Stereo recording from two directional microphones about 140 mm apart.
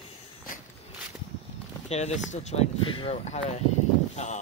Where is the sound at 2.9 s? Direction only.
45° left (ahead or behind).